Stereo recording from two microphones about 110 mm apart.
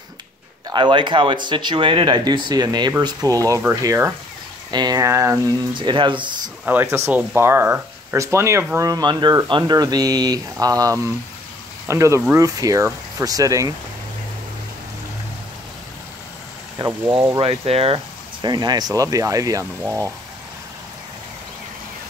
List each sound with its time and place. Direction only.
0.7 s speech: 45° right (ahead or behind); by 4.1 s 30° right (ahead or behind)
4.6 s speech: 40° right (ahead or behind)
5.8 s speech: 45° right (ahead or behind)
6.6 s speech: 15° right (ahead or behind)
16.7 s speech: 30° right (ahead or behind)
17.4 s speech: 65° right (ahead or behind)
18.4 s speech: 40° right (ahead or behind)
19.8 s speech: 20° right (ahead or behind)